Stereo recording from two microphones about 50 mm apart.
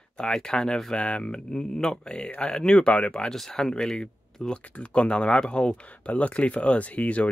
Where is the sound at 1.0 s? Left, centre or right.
Left.